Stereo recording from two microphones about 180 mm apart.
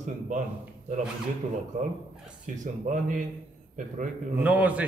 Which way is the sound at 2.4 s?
45° right (ahead or behind).